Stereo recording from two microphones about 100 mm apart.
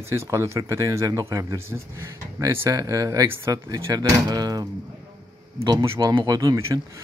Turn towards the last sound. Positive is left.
turn(degrees=-35)  # may be behind; listen again after turning